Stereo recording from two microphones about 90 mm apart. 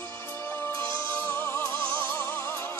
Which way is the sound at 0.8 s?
25° left (ahead or behind).